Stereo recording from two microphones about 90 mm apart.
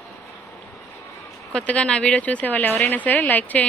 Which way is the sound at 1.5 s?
15° left (ahead or behind).